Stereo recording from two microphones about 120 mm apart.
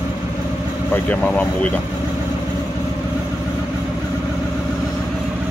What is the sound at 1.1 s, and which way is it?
Speech, 10° left (ahead or behind).